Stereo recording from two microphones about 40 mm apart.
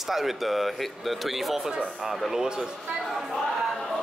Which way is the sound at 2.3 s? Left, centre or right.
Centre.